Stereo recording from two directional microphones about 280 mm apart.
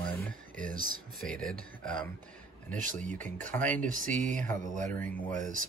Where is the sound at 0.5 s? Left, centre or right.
Right.